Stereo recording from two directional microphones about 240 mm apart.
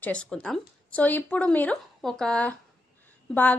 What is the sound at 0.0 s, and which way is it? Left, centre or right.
A woman's voice, centre.